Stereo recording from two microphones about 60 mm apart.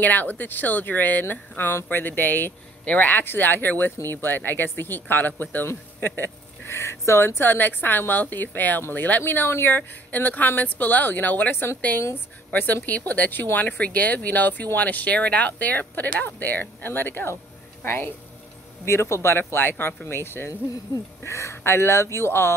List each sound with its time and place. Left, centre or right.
0.0 s speech: left
18.9 s speech: left